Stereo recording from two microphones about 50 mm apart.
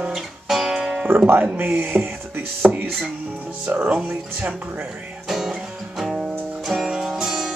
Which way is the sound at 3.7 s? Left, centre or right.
Right.